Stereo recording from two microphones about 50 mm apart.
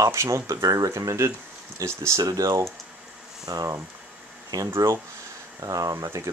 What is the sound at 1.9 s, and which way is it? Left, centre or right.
Speech, right.